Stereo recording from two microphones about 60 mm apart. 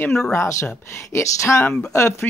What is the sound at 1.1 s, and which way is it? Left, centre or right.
Speech, left.